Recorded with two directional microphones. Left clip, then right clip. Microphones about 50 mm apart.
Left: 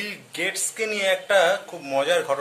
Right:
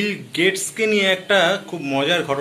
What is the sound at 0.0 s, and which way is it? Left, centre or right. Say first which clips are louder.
Speech: right 8 dB; left.